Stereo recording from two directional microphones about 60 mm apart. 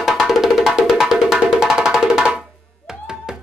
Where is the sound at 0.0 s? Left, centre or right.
Centre.